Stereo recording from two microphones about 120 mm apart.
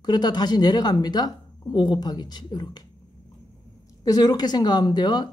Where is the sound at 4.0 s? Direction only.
35° left (ahead or behind).